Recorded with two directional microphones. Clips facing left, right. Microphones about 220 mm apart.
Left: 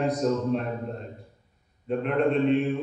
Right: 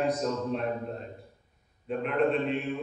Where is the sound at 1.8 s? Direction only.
Centre (ahead or behind).